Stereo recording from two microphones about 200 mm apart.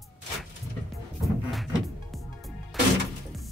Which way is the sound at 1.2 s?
Centre (ahead or behind).